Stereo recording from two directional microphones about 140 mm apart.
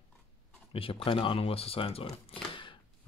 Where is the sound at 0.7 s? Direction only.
40° left (ahead or behind).